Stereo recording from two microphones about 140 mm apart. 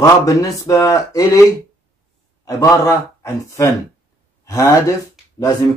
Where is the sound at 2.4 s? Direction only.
25° left (ahead or behind).